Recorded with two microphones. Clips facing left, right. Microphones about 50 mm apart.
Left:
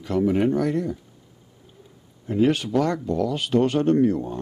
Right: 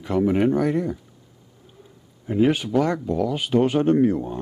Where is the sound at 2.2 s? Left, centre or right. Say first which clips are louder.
Right 1 dB; centre.